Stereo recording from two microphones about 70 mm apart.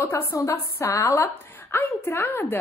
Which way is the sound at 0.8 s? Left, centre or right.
Left.